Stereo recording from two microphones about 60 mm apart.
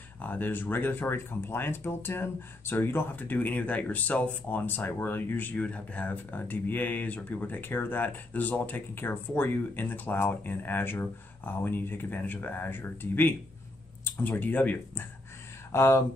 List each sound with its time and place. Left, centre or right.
0.2 s speech: left
14.0 s a sound: left
14.3 s speech: left
15.7 s speech: left